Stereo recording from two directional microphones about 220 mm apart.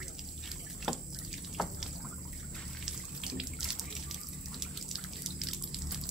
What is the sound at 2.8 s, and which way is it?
Water, centre (ahead or behind).